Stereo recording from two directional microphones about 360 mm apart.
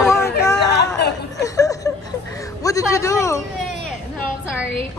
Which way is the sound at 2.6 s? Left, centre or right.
Centre.